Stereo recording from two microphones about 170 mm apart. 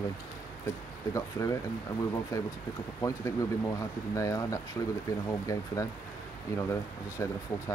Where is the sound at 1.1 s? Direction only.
20° left (ahead or behind).